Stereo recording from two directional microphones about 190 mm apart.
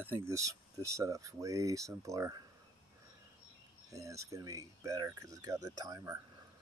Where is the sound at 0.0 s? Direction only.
10° right (ahead or behind).